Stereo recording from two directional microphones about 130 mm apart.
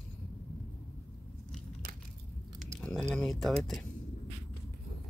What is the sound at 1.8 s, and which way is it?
Biting, 90° right.